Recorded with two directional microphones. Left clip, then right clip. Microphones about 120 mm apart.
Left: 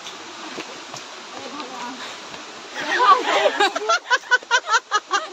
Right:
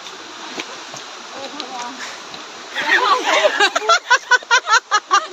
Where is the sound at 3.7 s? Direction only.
35° right (ahead or behind).